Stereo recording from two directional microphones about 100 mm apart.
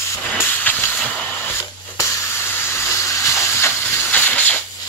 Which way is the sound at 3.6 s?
20° left (ahead or behind).